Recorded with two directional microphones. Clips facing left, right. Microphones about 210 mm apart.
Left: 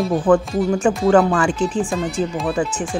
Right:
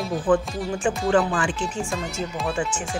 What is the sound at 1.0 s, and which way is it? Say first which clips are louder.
Speech: left 6 dB; 65° left (ahead or behind).